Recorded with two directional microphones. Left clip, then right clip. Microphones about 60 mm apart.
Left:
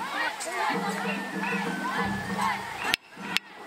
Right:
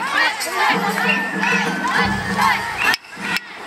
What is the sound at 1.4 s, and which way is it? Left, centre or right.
Crowd, right.